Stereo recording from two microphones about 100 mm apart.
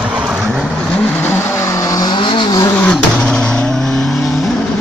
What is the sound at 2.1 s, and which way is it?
Vehicle, 55° left (ahead or behind).